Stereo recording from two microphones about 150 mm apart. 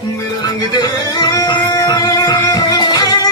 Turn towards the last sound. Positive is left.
turn(degrees=25)  # may be behind; listen again after turning